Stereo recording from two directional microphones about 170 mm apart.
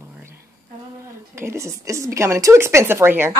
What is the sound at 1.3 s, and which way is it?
Speech, 15° right (ahead or behind).